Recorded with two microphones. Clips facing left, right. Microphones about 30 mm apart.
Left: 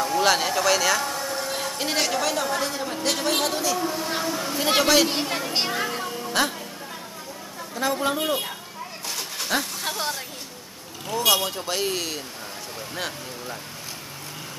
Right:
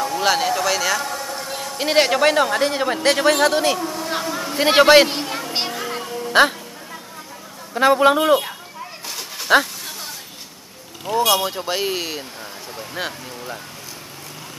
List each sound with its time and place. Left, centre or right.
0.0 s a sound: centre
2.0 s speech: right
3.8 s speech: centre
4.1 s vehicle: centre
4.6 s a man's voice: right
5.1 s speech: centre
5.9 s music: centre
7.7 s a man's voice: right
9.5 s a man's voice: right
9.8 s a sound: left
11.2 s speech: centre